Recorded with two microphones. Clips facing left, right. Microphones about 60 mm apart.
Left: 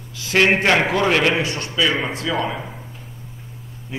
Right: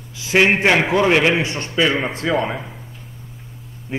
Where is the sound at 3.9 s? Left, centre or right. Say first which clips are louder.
Right 4 dB; right.